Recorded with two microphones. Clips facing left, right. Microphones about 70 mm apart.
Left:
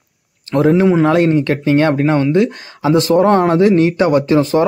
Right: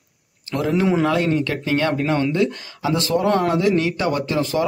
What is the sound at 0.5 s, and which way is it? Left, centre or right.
Speech, left.